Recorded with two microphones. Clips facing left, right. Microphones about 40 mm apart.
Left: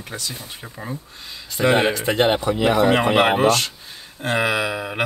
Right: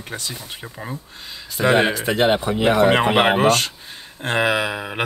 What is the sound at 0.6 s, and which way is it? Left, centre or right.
Speech, centre.